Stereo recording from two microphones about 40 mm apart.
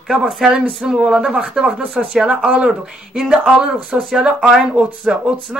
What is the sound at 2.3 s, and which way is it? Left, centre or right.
Speech, right.